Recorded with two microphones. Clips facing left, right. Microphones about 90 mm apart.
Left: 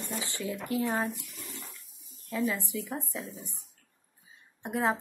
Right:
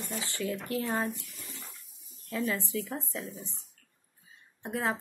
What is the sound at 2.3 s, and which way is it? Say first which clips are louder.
Speech: left 1 dB; 10° left (ahead or behind).